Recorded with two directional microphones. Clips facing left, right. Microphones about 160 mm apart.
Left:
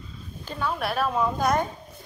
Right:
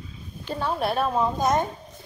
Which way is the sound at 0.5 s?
30° right (ahead or behind).